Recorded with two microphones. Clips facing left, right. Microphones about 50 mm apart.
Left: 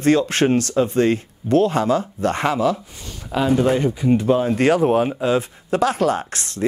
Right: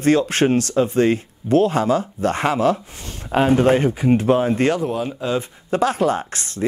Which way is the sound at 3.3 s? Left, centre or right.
Right.